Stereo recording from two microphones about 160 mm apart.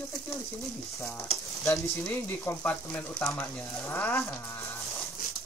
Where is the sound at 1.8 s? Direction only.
15° left (ahead or behind).